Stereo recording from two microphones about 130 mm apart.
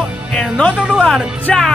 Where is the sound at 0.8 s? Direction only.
5° right (ahead or behind).